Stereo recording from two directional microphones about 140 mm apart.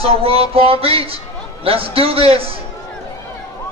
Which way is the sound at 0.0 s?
45° right (ahead or behind).